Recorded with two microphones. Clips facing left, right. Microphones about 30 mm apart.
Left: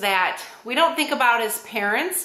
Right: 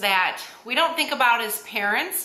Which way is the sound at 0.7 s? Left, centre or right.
Right.